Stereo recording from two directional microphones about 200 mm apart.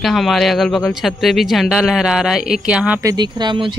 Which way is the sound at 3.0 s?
20° right (ahead or behind).